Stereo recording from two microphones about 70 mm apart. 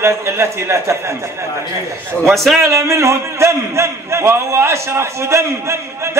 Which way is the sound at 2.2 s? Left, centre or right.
Centre.